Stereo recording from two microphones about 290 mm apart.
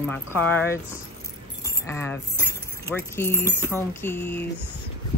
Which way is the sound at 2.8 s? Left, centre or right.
Centre.